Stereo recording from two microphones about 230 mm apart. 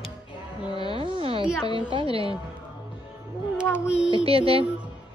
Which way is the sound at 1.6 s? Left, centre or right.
Centre.